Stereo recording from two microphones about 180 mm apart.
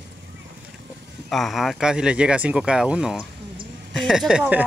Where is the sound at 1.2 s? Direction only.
Centre (ahead or behind).